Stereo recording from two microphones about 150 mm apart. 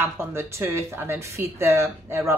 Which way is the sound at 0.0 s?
15° right (ahead or behind).